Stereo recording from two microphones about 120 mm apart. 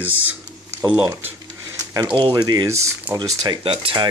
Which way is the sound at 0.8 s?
30° right (ahead or behind).